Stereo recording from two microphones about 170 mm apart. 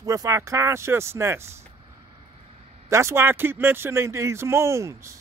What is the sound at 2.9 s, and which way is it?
Speech, 15° right (ahead or behind).